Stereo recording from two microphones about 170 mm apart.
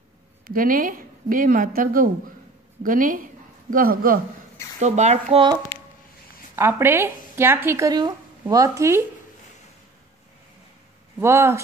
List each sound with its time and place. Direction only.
0.5 s a woman's voice: 55° right (ahead or behind)
4.7 s speech: 45° right (ahead or behind)
6.5 s speech: 15° right (ahead or behind)
11.1 s speech: 15° right (ahead or behind)